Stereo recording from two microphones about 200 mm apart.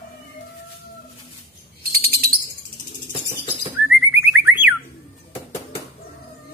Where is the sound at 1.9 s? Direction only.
50° right (ahead or behind).